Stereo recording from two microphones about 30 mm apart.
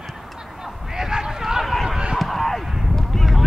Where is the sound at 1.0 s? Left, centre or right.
Right.